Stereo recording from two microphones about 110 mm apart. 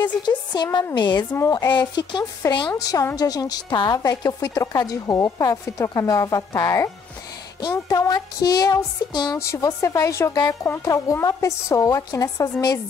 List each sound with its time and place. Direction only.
0.0 s a woman's voice: 40° left (ahead or behind)
1.3 s a woman's voice: 25° left (ahead or behind)
1.7 s a woman's voice: 45° left (ahead or behind)
2.4 s a woman's voice: 30° left (ahead or behind)